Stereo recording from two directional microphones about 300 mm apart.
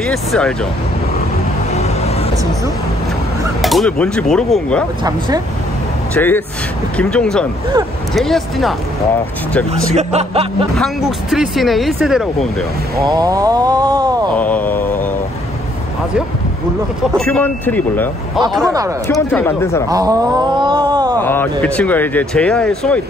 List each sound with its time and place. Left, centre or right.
0.0 s speech: centre
1.7 s vehicle: left
3.6 s speech: centre
6.1 s speech: centre
9.9 s speech: right
10.8 s speech: centre
13.0 s a sound: centre
14.3 s mantra: centre
17.2 s speech: centre
18.6 s a sound: centre
19.0 s speech: centre
19.9 s a sound: centre
21.2 s speech: centre